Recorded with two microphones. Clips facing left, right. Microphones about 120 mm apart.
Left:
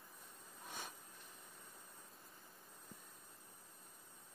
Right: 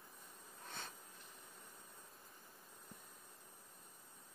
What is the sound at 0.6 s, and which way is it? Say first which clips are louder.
Sniff: left 1 dB; 10° left (ahead or behind).